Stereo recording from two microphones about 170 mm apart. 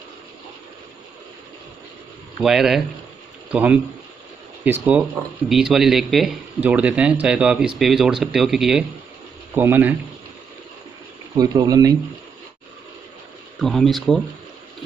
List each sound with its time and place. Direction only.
2.4 s speech: centre (ahead or behind)
4.8 s speech: 10° right (ahead or behind)
11.3 s speech: 25° right (ahead or behind)
13.6 s speech: centre (ahead or behind)